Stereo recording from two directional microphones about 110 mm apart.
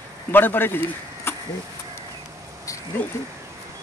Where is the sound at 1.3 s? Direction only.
20° left (ahead or behind).